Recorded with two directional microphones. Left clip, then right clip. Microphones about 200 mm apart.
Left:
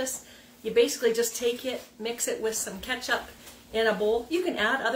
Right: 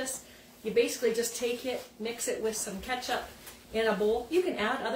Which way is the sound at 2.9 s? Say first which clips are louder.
Left 2 dB; 15° left (ahead or behind).